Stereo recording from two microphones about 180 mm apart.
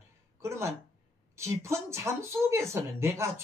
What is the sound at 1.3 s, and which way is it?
Speech, 15° right (ahead or behind).